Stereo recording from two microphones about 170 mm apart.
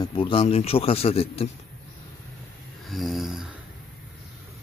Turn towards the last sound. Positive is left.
turn(degrees=0)  # may be behind; listen again after turning